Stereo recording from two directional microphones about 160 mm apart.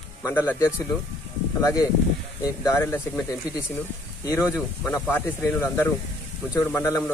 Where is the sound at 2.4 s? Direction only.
15° left (ahead or behind).